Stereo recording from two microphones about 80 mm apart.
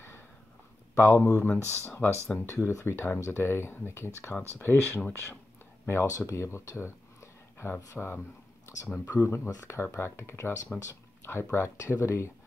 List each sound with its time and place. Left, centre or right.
0.9 s speech: left
8.8 s speech: centre
9.1 s speech: left